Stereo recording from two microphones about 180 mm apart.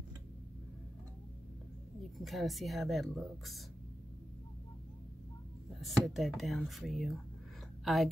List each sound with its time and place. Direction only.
2.1 s speech: centre (ahead or behind)
5.8 s a woman's voice: centre (ahead or behind)